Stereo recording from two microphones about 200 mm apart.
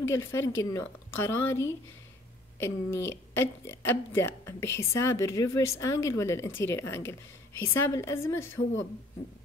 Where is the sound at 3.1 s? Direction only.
10° left (ahead or behind).